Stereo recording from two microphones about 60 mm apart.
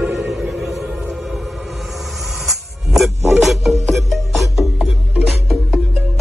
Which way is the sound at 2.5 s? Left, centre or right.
Centre.